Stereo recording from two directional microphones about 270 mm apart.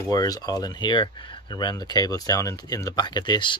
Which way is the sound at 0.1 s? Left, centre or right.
Centre.